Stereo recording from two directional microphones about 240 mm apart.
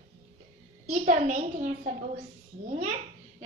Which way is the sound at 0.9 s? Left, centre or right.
Right.